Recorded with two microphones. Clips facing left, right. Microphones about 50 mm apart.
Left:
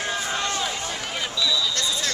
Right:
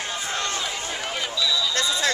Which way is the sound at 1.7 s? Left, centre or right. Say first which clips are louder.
Right 3 dB; right.